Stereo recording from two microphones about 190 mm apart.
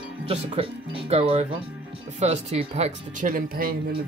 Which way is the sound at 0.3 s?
30° right (ahead or behind).